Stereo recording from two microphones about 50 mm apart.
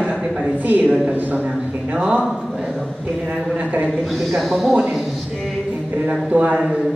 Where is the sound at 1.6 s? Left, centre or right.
Right.